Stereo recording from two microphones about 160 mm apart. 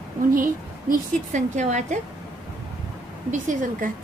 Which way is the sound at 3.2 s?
55° right (ahead or behind).